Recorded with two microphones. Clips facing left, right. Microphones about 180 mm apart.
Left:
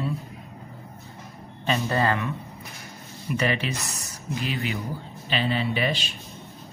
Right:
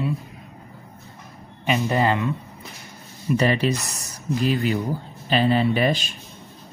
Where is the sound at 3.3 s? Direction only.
35° right (ahead or behind).